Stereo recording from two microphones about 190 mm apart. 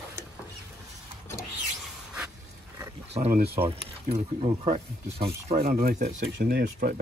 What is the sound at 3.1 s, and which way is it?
Speech, 35° right (ahead or behind).